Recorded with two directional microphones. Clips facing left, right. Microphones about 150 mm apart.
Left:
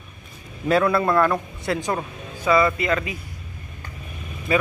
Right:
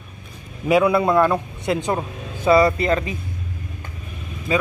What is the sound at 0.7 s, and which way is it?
A man's voice, 15° right (ahead or behind).